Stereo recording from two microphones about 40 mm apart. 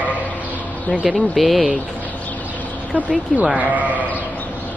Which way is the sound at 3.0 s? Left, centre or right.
Right.